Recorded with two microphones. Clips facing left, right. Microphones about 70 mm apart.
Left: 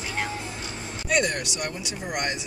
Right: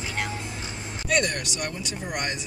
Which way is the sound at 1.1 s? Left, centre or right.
Centre.